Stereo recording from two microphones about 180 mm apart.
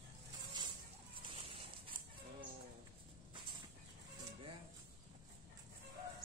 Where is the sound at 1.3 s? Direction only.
30° right (ahead or behind).